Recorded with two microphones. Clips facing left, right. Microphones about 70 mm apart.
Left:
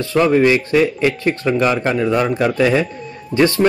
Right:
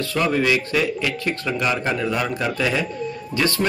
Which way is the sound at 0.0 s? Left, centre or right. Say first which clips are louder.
Left 7 dB; left.